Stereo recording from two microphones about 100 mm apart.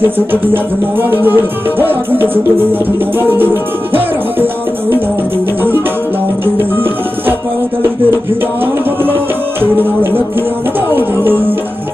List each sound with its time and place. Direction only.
0.3 s music: 20° right (ahead or behind)
6.4 s music: 20° right (ahead or behind)
9.6 s music: 20° right (ahead or behind)